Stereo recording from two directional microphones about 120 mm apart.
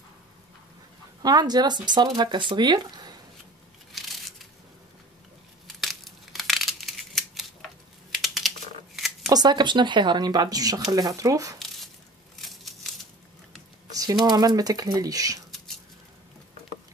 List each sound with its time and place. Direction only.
1.2 s speech: 35° right (ahead or behind)
3.9 s a sound: centre (ahead or behind)
5.8 s crushing: centre (ahead or behind)
8.1 s typing: centre (ahead or behind)
9.3 s speech: 35° right (ahead or behind)
12.4 s a sound: centre (ahead or behind)
14.2 s speech: 35° right (ahead or behind)